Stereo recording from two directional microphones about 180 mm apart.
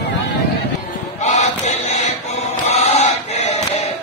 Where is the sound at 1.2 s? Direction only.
40° left (ahead or behind).